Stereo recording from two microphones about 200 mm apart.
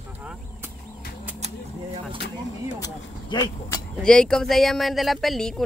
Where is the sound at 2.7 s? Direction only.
20° left (ahead or behind).